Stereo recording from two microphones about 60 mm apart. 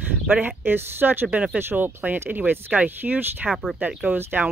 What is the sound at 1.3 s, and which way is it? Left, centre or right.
Speech, centre.